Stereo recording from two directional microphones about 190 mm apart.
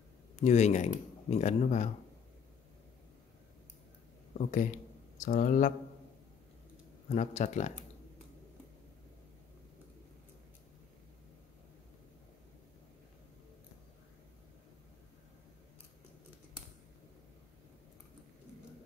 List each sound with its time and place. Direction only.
0.4 s speech: 35° left (ahead or behind)
4.3 s speech: 40° left (ahead or behind)
7.1 s speech: 35° left (ahead or behind)